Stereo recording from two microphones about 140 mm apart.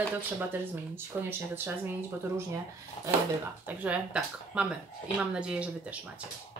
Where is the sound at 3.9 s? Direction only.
5° right (ahead or behind).